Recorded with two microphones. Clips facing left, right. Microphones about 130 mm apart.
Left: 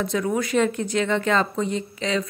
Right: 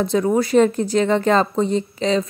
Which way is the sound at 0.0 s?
30° right (ahead or behind).